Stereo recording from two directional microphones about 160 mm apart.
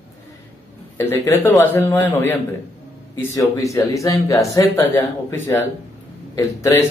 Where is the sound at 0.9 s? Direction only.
15° left (ahead or behind).